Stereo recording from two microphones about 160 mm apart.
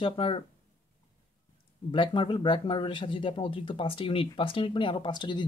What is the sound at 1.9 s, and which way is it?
Speech, 30° left (ahead or behind).